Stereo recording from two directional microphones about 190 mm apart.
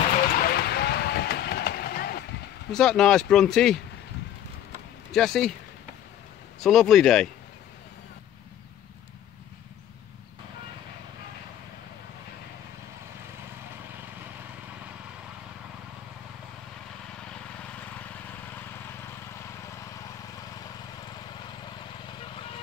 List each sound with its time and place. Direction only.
0.4 s vehicle: 55° left (ahead or behind)
2.7 s speech: 5° left (ahead or behind)
5.1 s speech: centre (ahead or behind)
6.6 s speech: centre (ahead or behind)